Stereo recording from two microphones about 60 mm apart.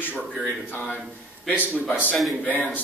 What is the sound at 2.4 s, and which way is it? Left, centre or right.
Speech, left.